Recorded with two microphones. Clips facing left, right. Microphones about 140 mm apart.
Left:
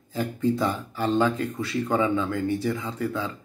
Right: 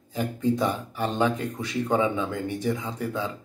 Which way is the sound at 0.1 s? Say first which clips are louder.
Even; 20° right (ahead or behind).